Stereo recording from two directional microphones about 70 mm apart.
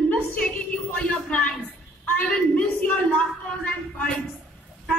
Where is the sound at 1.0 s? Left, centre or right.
Left.